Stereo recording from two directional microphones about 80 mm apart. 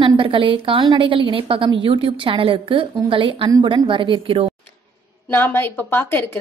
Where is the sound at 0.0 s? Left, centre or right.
Right.